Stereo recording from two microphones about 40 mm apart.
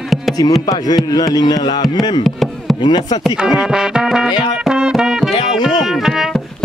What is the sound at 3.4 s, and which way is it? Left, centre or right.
Music, centre.